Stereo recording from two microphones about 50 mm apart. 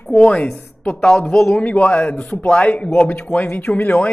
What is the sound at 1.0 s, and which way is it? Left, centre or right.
Speech, centre.